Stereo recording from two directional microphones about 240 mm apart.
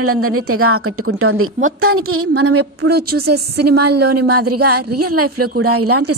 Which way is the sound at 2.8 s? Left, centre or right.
Right.